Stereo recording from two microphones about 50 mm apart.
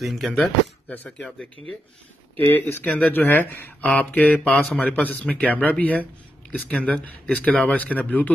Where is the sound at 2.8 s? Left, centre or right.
Left.